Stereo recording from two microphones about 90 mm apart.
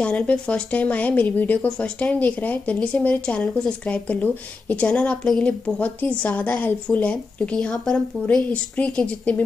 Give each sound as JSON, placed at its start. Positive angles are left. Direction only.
{"t": 0.0, "sound": "speech", "side_deg": 15}